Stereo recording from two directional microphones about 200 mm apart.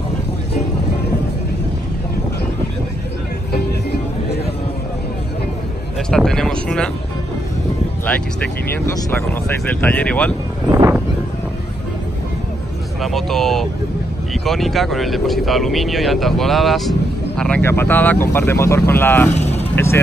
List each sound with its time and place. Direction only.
3.5 s music: 55° left (ahead or behind)
6.0 s a sound: 5° left (ahead or behind)
8.7 s speech: 15° left (ahead or behind)
13.0 s speech: centre (ahead or behind)
19.3 s vehicle: 35° left (ahead or behind)
19.7 s speech: 15° left (ahead or behind)